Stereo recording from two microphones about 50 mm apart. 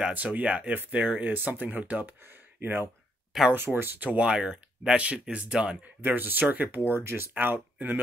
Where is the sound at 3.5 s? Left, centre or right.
Right.